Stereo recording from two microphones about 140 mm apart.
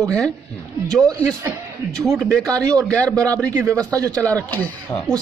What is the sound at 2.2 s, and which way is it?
Speech, 25° right (ahead or behind).